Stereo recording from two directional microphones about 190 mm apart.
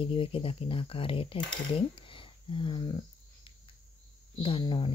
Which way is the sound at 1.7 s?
25° left (ahead or behind).